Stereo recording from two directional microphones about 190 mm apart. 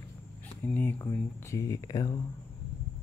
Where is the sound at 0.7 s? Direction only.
10° left (ahead or behind).